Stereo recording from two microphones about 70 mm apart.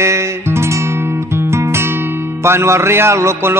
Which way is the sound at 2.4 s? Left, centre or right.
Right.